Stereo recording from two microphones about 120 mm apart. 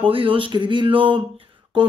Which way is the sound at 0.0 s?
50° right (ahead or behind).